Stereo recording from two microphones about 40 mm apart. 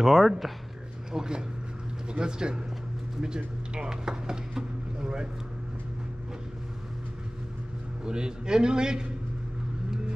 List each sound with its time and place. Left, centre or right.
0.0 s speech: centre
1.1 s a man's voice: centre
3.2 s a sound: right
8.0 s a man's voice: right